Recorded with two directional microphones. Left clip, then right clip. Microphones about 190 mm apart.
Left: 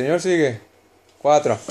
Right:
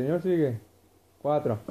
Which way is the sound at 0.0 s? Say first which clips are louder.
Left 8 dB; 20° left (ahead or behind).